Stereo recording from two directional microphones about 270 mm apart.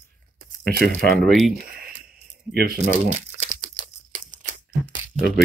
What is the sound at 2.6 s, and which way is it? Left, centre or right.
Speech, right.